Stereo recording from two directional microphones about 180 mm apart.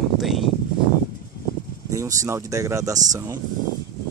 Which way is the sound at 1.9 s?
15° right (ahead or behind).